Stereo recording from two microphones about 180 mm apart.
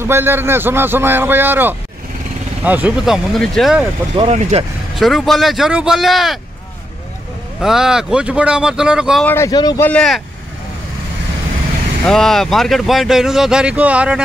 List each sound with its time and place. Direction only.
0.0 s a man's voice: 10° right (ahead or behind)
4.1 s speech: 35° right (ahead or behind)
4.9 s speech: centre (ahead or behind)
7.6 s speech: 5° right (ahead or behind)
9.2 s speech: 15° left (ahead or behind)
9.8 s speech: 5° left (ahead or behind)
12.1 s speech: centre (ahead or behind)